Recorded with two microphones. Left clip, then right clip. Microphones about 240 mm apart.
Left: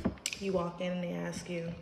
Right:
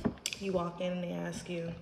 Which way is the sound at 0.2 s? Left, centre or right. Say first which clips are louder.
Left 2 dB; centre.